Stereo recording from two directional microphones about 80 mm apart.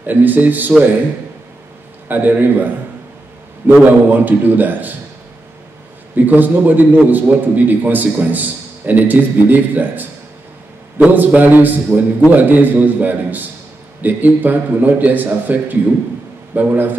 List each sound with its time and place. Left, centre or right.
0.0 s a man's voice: right
2.0 s a man's voice: right
6.1 s a man's voice: right